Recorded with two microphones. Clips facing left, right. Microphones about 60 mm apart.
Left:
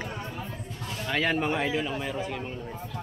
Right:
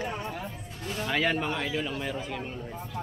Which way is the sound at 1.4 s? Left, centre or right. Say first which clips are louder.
Left 3 dB; centre.